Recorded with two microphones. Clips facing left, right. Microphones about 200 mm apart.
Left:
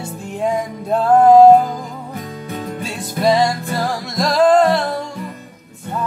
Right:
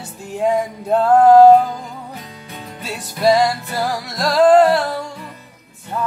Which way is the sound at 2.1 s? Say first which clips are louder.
Left 7 dB; 50° left (ahead or behind).